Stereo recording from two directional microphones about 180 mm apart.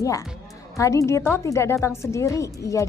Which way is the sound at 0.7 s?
15° left (ahead or behind).